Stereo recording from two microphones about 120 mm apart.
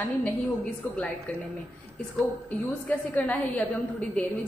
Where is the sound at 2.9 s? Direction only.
15° left (ahead or behind).